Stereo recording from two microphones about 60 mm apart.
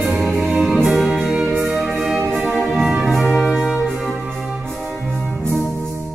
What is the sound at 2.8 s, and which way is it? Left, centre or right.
Music, centre.